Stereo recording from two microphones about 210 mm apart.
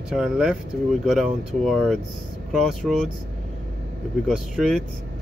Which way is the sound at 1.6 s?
Centre (ahead or behind).